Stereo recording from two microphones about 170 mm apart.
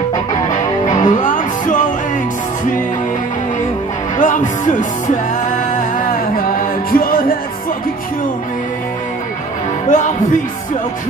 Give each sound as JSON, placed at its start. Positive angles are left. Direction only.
{"t": 0.3, "sound": "music", "side_deg": 25}
{"t": 1.0, "sound": "music", "side_deg": 45}
{"t": 4.2, "sound": "music", "side_deg": 50}
{"t": 6.3, "sound": "music", "side_deg": 55}
{"t": 9.8, "sound": "music", "side_deg": 45}